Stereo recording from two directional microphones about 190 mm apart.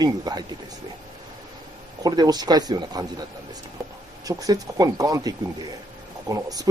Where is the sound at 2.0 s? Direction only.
20° right (ahead or behind).